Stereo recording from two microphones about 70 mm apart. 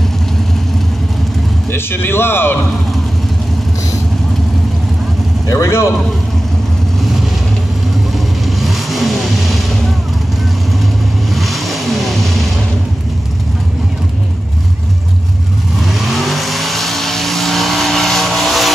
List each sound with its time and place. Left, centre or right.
1.7 s a man's voice: left
5.5 s a man's voice: left
7.0 s vehicle: centre
11.3 s vehicle: centre
15.8 s vehicle: centre